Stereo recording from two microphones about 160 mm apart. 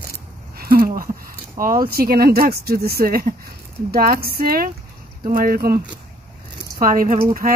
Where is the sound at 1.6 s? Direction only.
60° right (ahead or behind).